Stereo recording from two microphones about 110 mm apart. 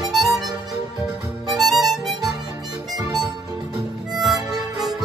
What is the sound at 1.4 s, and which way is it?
Music, centre (ahead or behind).